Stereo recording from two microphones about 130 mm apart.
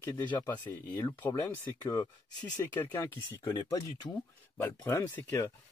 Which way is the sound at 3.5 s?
30° left (ahead or behind).